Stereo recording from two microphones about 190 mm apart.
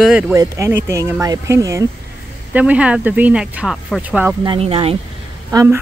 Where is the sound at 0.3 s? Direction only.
15° right (ahead or behind).